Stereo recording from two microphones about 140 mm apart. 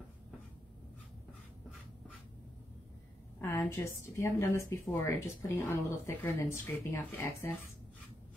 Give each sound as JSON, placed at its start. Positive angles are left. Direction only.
{"t": 3.3, "sound": "a woman's voice", "side_deg": 15}